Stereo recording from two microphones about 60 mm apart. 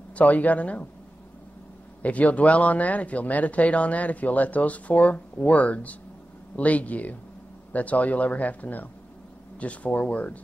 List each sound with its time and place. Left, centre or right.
0.1 s speech: left
2.0 s speech: left